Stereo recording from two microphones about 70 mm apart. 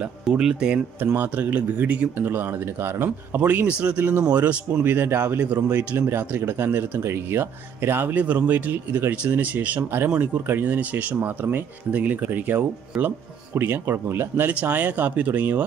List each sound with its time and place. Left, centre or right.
0.4 s speech: centre
1.0 s speech: right
2.2 s speech: right
4.9 s speech: right
13.6 s speech: right